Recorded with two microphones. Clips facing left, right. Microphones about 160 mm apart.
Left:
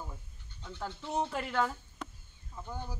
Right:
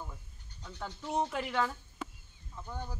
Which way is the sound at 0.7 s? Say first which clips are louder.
Even; 5° left (ahead or behind).